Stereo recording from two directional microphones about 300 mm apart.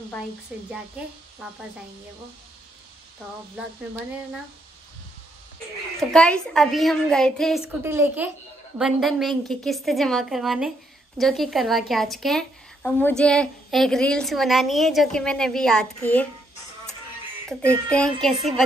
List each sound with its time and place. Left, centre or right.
0.7 s speech: centre
5.9 s speech: centre
17.5 s speech: centre